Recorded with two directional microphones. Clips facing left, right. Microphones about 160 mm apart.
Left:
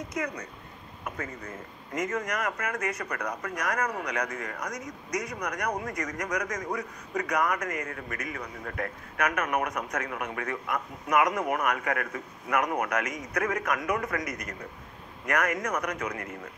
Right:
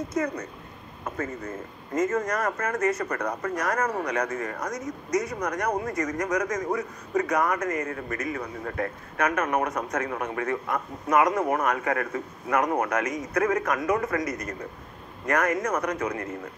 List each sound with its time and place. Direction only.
0.1 s speech: 30° right (ahead or behind)
4.7 s speech: 15° left (ahead or behind)
5.3 s speech: 25° right (ahead or behind)
15.2 s speech: 25° right (ahead or behind)